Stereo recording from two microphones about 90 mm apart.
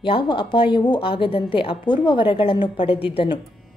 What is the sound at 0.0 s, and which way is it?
A woman's voice, 65° left (ahead or behind).